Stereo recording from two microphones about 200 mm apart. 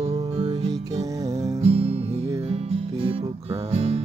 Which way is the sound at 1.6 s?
30° right (ahead or behind).